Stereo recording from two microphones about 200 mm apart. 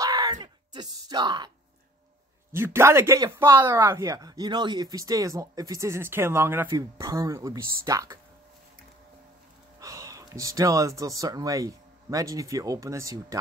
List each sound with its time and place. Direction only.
0.0 s a sound: 20° right (ahead or behind)
2.5 s speech: 10° right (ahead or behind)
9.8 s speech: 15° right (ahead or behind)